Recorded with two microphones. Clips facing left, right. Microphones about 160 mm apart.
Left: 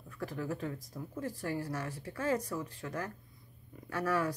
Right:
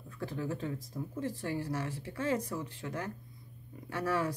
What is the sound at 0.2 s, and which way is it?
Speech, 25° right (ahead or behind).